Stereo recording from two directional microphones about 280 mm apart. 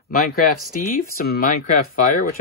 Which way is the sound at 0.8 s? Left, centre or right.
Left.